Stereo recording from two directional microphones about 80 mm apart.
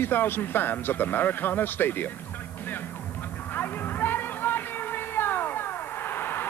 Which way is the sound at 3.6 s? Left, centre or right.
Left.